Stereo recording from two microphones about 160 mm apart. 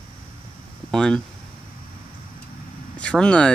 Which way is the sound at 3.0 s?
5° left (ahead or behind).